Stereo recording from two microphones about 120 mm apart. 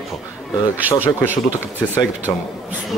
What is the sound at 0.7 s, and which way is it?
Speech, 15° right (ahead or behind).